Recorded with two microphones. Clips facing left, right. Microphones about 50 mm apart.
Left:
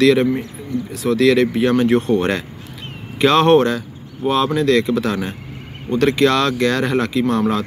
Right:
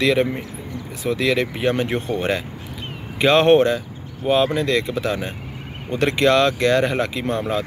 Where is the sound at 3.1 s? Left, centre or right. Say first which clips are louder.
Left 1 dB; centre.